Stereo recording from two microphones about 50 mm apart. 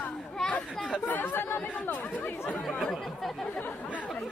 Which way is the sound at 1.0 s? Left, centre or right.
Left.